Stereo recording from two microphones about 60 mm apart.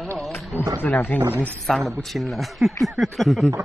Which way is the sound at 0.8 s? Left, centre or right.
Left.